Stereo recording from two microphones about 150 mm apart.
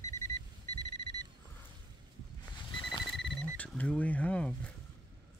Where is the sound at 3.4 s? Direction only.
10° left (ahead or behind).